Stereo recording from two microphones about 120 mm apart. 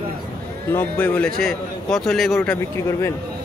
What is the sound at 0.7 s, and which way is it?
Speech, 15° left (ahead or behind).